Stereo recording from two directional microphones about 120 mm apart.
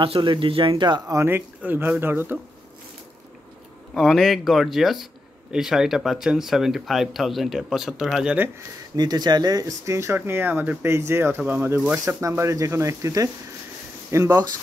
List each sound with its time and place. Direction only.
0.0 s speech: 45° right (ahead or behind)
1.1 s speech: 20° right (ahead or behind)
3.9 s speech: centre (ahead or behind)
8.9 s speech: 35° right (ahead or behind)